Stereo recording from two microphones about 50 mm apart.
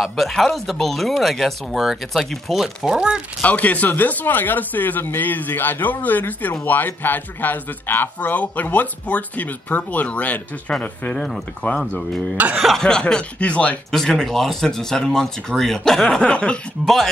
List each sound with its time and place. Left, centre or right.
0.0 s speech: centre
3.4 s speech: left
12.4 s speech: right
12.6 s speech: centre
13.1 s speech: left
13.9 s speech: centre
16.8 s speech: centre